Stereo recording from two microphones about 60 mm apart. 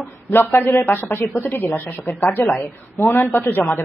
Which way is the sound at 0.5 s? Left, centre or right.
Left.